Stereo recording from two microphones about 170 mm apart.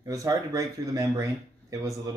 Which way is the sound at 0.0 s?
20° right (ahead or behind).